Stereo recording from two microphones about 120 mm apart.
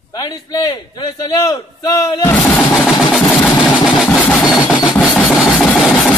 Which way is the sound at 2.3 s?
10° left (ahead or behind).